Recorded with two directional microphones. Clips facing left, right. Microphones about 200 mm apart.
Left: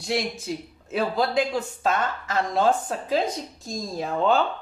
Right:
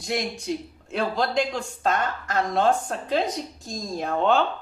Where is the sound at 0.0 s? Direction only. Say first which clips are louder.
Left 1 dB; centre (ahead or behind).